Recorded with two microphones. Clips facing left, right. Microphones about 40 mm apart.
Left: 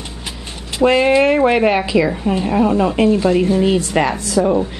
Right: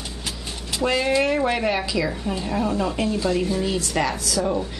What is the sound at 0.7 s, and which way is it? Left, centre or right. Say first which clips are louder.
Speech: left 8 dB; left.